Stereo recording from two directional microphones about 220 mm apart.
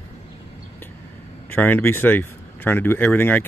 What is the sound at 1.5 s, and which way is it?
Speech, 10° left (ahead or behind).